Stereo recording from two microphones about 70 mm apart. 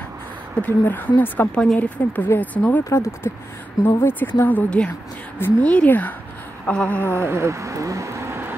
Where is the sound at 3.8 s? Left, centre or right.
Left.